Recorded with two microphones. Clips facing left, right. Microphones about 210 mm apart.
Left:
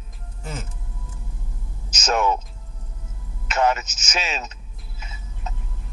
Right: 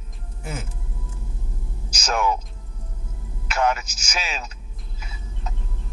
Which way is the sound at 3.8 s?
10° right (ahead or behind).